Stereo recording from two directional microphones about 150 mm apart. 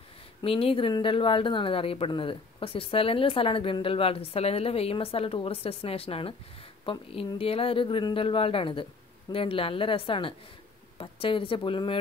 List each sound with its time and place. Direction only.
0.4 s speech: 40° left (ahead or behind)